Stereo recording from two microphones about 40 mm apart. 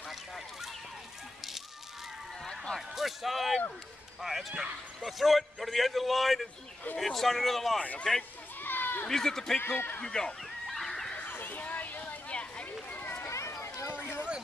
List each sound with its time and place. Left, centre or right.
2.9 s a man's voice: centre
8.5 s a sound: left
9.0 s a man's voice: centre
9.7 s speech: left
10.0 s a man's voice: centre
10.7 s a sound: centre
11.1 s a sound: left
12.9 s run: left
13.2 s run: left
13.9 s chatter: left